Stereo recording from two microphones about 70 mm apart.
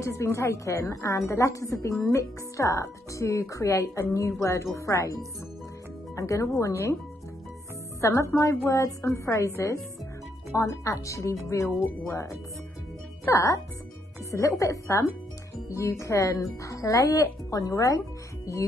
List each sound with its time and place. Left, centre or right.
0.0 s a woman's voice: left
6.1 s a woman's voice: left
8.0 s a woman's voice: left
10.5 s a woman's voice: left
14.6 s a woman's voice: left